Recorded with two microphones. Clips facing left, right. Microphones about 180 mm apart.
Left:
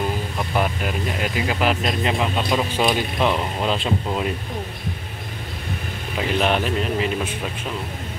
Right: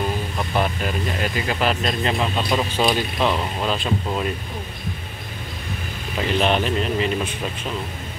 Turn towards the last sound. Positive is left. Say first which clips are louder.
# right 1 dB
turn(degrees=5)  # may be behind; listen again after turning